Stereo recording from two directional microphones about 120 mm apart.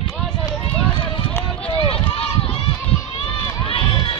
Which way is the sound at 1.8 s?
50° left (ahead or behind).